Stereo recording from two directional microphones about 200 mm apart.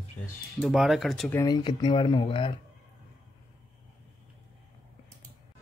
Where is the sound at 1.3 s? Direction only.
20° left (ahead or behind).